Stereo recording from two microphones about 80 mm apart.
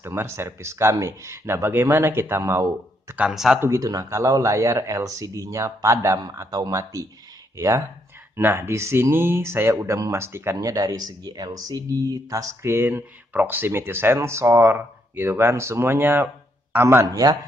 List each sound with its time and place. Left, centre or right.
0.0 s speech: right
3.2 s speech: centre
3.5 s speech: right
3.8 s speech: right
10.6 s speech: right
12.6 s a man's voice: right
17.1 s speech: right